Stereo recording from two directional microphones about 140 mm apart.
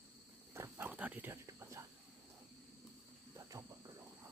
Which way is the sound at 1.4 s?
20° right (ahead or behind).